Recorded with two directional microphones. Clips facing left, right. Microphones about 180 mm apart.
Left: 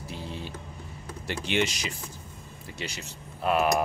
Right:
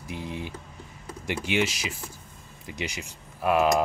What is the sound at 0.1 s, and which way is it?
Speech, 15° right (ahead or behind).